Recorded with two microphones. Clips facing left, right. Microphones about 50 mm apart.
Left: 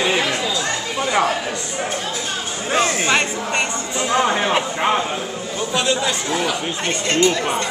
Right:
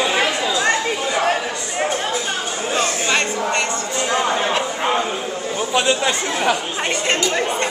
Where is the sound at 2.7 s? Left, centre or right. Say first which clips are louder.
Left 3 dB; centre.